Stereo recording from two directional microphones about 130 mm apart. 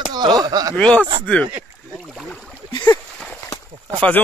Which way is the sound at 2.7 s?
35° left (ahead or behind).